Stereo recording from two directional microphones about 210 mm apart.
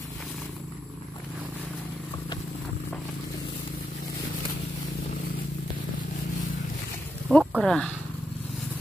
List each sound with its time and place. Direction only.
7.2 s speech: centre (ahead or behind)